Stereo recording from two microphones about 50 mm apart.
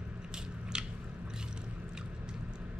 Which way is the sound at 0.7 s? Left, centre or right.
Centre.